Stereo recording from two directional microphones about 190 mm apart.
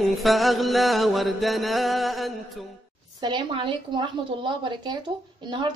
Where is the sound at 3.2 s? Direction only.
25° right (ahead or behind).